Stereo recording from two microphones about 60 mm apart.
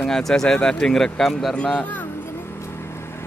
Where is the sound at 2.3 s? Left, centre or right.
Left.